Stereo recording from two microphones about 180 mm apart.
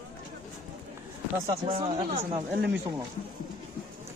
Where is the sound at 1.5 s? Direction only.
30° right (ahead or behind).